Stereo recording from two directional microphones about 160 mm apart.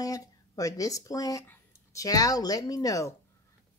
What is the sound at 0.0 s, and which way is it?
Speech, 20° left (ahead or behind).